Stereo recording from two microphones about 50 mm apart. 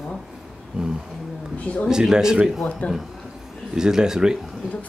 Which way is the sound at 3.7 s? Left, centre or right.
Centre.